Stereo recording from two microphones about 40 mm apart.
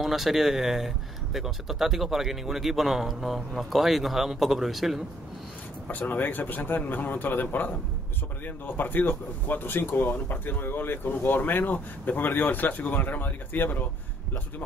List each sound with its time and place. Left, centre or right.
0.0 s speech: centre
5.9 s speech: left